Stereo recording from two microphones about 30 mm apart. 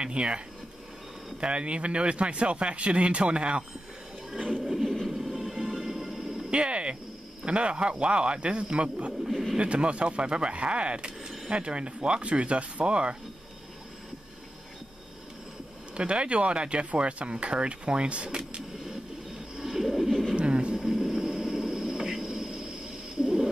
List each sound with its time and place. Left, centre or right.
0.0 s speech: right
1.4 s speech: right
4.9 s train: centre
5.8 s music: centre
6.5 s speech: right
16.0 s speech: right
19.5 s a sound: centre
20.3 s a sound: right
20.7 s vehicle: centre
23.2 s a sound: centre